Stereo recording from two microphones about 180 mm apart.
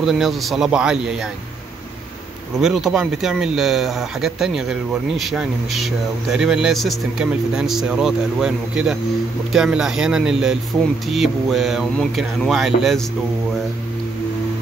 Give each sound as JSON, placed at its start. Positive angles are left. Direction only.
{"t": 0.0, "sound": "speech", "side_deg": 0}
{"t": 2.6, "sound": "speech", "side_deg": 0}